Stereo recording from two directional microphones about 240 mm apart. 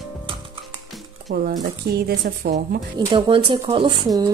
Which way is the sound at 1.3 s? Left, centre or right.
Right.